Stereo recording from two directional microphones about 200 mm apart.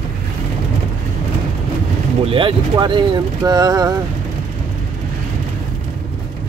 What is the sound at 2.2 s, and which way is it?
Speech, 25° right (ahead or behind).